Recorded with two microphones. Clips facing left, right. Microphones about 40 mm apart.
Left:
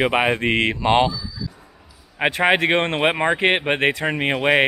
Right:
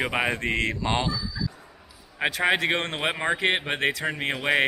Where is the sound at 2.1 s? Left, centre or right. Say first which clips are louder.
Left 5 dB; left.